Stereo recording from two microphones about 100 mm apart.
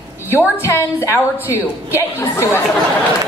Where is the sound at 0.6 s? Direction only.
25° left (ahead or behind).